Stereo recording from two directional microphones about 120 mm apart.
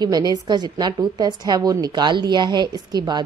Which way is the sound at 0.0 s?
35° right (ahead or behind).